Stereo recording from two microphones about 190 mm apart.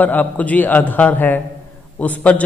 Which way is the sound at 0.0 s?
10° left (ahead or behind).